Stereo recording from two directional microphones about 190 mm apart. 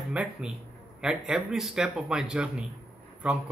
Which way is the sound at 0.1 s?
5° right (ahead or behind).